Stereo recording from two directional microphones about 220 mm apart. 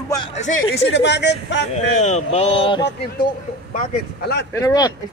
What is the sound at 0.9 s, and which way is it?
Speech, 50° left (ahead or behind).